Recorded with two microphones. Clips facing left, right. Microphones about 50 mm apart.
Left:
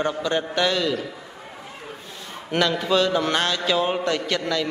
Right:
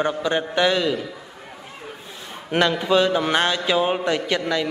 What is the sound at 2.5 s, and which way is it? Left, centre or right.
A man's voice, centre.